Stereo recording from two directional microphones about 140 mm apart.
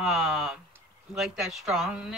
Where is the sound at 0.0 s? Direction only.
Centre (ahead or behind).